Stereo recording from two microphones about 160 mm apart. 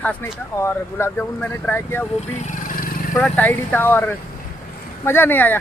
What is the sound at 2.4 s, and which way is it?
Vehicle, 50° left (ahead or behind).